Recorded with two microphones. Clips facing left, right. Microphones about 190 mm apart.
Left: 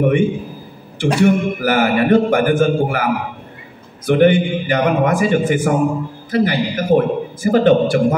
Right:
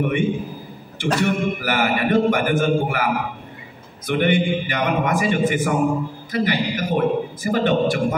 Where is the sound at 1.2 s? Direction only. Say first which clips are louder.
Left 9 dB; 45° left (ahead or behind).